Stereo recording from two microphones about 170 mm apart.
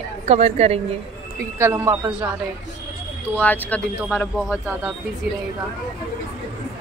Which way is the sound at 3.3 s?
10° left (ahead or behind).